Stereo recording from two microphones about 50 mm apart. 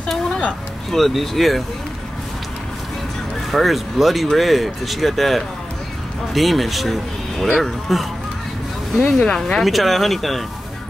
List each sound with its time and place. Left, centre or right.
0.9 s speech: centre
3.5 s speech: centre
9.0 s speech: centre
9.4 s speech: centre